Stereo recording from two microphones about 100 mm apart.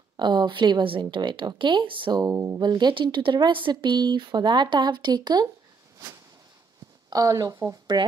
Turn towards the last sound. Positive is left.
turn(degrees=-40)  # may be behind; listen again after turning